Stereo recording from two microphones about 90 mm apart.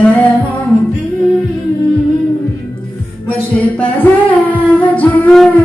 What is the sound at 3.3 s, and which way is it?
Singing, 20° left (ahead or behind).